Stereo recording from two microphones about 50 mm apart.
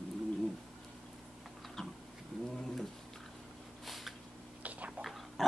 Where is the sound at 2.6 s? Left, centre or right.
Centre.